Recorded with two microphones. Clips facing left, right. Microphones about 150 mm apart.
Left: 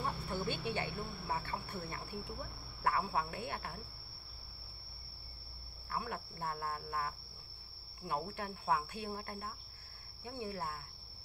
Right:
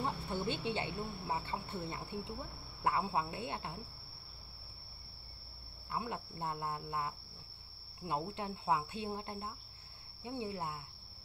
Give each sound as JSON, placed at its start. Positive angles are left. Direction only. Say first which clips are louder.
{"t": 0.0, "sound": "speech", "louder": "right 1 dB", "side_deg": -25}
{"t": 5.9, "sound": "speech", "louder": "right 1 dB", "side_deg": -20}